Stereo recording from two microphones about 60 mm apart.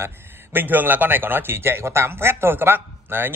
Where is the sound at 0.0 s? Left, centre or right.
Right.